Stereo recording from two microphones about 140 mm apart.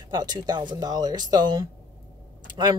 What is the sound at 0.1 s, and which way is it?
Speech, 30° right (ahead or behind).